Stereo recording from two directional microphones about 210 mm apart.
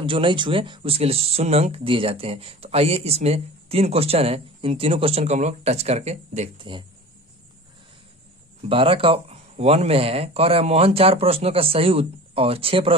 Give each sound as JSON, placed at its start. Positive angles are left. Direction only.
{"t": 0.0, "sound": "speech", "side_deg": -25}
{"t": 8.6, "sound": "speech", "side_deg": -25}